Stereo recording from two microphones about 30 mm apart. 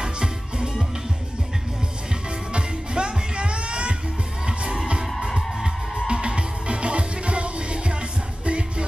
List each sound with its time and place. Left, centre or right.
0.0 s music: right
2.5 s music: right
6.0 s music: right